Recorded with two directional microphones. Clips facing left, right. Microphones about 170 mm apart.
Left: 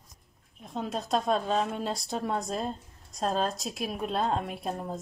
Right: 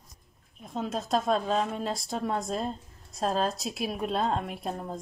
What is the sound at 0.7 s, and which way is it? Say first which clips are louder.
A woman's voice: right 1 dB; centre (ahead or behind).